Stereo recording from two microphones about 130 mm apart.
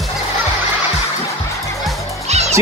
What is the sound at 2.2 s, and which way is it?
Music, 55° right (ahead or behind).